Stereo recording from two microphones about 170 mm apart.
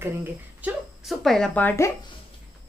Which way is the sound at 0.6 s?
Centre (ahead or behind).